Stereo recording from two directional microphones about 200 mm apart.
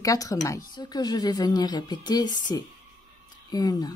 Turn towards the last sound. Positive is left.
turn(degrees=20)  # may be behind; listen again after turning